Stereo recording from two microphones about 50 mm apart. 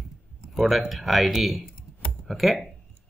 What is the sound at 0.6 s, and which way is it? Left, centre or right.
Speech, centre.